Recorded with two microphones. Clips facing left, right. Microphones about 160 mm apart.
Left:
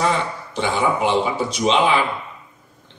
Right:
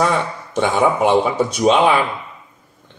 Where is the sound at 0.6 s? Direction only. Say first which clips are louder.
Right 4 dB; 50° right (ahead or behind).